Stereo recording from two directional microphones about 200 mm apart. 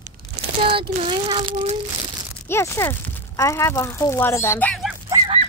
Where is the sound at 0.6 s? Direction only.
25° right (ahead or behind).